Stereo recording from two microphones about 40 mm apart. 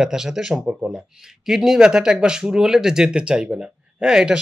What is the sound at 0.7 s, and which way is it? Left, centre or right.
Speech, right.